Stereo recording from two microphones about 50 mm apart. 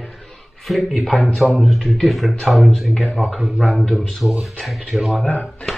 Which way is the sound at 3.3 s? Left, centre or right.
Centre.